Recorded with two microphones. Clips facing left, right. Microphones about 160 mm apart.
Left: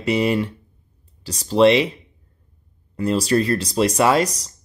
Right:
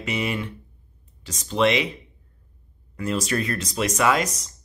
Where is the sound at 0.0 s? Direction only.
35° left (ahead or behind).